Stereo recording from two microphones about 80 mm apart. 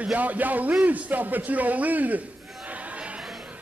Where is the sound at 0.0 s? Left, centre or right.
Centre.